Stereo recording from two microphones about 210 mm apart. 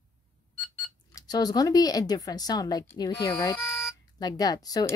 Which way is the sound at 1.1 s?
20° left (ahead or behind).